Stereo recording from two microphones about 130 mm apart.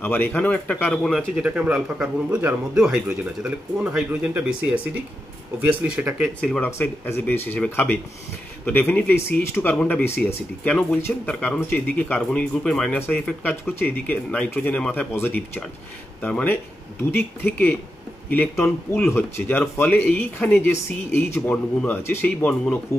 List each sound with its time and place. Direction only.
0.0 s speech: 15° left (ahead or behind)
1.0 s speech: centre (ahead or behind)
6.6 s speech: 15° left (ahead or behind)